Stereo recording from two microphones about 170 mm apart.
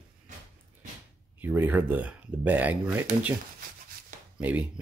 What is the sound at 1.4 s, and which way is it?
Speech, 10° right (ahead or behind).